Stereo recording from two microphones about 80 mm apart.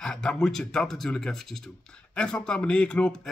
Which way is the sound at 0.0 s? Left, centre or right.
Centre.